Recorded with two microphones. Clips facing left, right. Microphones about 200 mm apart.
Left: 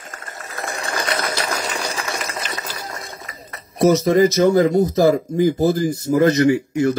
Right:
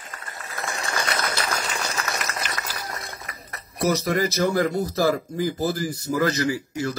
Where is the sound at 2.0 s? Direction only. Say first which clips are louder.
Left 3 dB; 30° left (ahead or behind).